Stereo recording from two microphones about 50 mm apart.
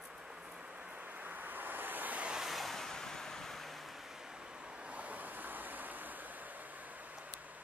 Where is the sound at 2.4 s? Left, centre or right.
Centre.